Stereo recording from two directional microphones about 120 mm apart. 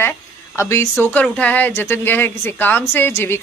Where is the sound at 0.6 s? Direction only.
25° left (ahead or behind).